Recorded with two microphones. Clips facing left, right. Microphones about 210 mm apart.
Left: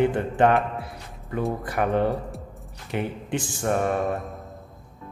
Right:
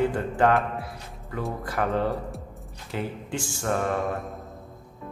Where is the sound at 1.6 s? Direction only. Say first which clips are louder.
Left 2 dB; 15° left (ahead or behind).